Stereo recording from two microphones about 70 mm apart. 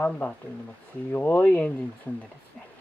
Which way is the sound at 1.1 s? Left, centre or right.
Left.